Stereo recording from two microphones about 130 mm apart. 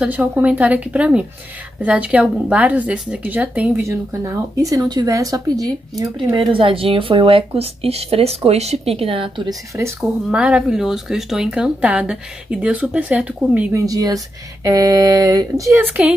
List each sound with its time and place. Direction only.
0.0 s speech: 10° right (ahead or behind)
3.8 s speech: 25° right (ahead or behind)
6.5 s speech: 45° right (ahead or behind)
9.5 s speech: 25° right (ahead or behind)
9.9 s speech: 5° right (ahead or behind)
13.7 s speech: 30° right (ahead or behind)
15.8 s speech: 15° right (ahead or behind)